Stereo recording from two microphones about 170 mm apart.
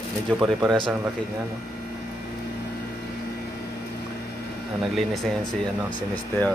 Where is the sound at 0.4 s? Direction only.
Centre (ahead or behind).